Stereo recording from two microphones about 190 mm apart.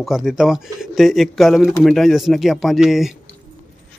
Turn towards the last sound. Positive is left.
turn(degrees=0)  # may be behind; listen again after turning